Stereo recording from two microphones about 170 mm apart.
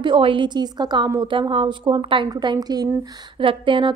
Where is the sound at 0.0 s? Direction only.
30° right (ahead or behind).